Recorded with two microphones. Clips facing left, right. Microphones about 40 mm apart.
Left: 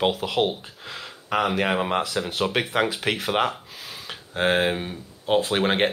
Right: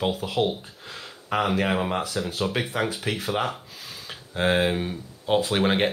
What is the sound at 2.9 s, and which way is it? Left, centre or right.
Speech, left.